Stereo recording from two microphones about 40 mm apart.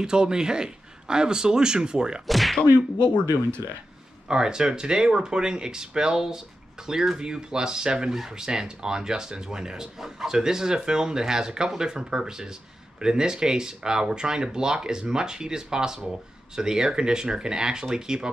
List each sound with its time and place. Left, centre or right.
0.0 s speech: centre
2.2 s speech: centre
4.3 s speech: centre